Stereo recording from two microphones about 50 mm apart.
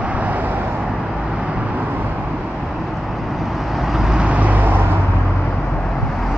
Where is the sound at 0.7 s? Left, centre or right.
Centre; by 2.2 s right.